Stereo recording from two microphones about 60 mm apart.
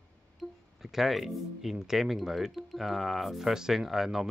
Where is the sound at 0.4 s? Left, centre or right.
Centre.